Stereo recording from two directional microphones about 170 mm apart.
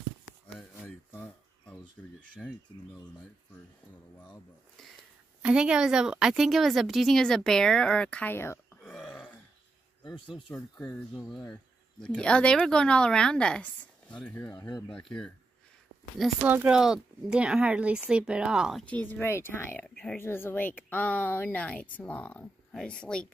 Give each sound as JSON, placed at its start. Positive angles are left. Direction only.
{"t": 0.6, "sound": "a sound", "side_deg": 5}
{"t": 2.2, "sound": "speech", "side_deg": 5}
{"t": 5.4, "sound": "a woman's voice", "side_deg": -5}
{"t": 8.9, "sound": "burping", "side_deg": 5}
{"t": 10.0, "sound": "speech", "side_deg": 30}
{"t": 10.5, "sound": "a woman's voice", "side_deg": 10}
{"t": 16.2, "sound": "speech", "side_deg": -10}